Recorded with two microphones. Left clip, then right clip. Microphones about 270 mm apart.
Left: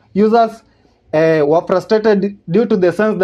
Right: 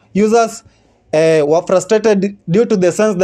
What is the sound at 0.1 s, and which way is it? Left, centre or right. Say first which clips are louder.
A man's voice: even; right.